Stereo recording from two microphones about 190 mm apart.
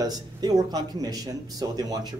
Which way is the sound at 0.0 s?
20° right (ahead or behind).